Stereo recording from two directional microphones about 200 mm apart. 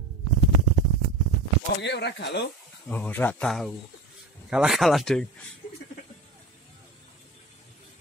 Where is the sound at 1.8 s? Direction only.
60° left (ahead or behind).